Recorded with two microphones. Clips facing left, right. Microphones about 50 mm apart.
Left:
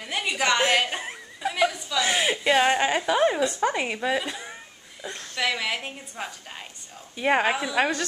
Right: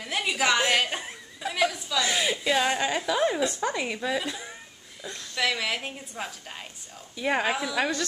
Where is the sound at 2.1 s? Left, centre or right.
Left.